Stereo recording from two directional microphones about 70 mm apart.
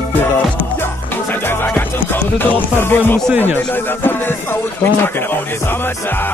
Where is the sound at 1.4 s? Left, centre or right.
Left.